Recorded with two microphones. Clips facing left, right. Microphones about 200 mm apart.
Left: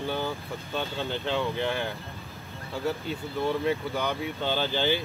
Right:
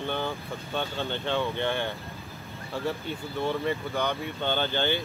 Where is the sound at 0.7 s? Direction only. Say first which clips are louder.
Even; centre (ahead or behind).